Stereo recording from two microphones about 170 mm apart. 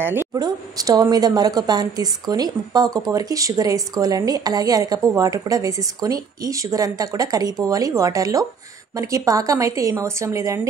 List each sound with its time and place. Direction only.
0.1 s speech: 20° right (ahead or behind)